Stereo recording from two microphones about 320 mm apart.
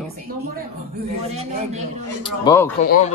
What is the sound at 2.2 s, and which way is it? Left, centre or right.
Speech, centre.